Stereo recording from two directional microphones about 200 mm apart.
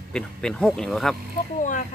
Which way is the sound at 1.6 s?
40° left (ahead or behind).